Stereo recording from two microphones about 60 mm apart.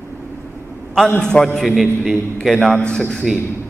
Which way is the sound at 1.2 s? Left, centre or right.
Centre.